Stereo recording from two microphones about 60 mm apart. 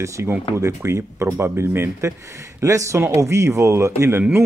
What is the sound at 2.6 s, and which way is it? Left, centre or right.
Speech, right.